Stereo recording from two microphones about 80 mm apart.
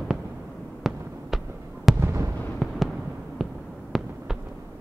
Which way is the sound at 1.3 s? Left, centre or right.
Centre.